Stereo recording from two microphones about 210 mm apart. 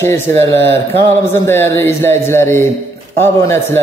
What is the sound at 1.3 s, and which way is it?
A man's voice, 10° left (ahead or behind).